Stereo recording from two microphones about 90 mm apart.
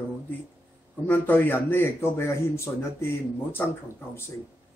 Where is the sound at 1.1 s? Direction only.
20° left (ahead or behind).